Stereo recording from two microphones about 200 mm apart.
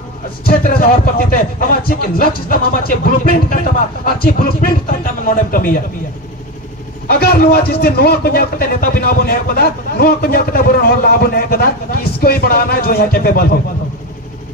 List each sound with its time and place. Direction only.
0.5 s speech: 45° left (ahead or behind)
7.1 s speech: 50° left (ahead or behind)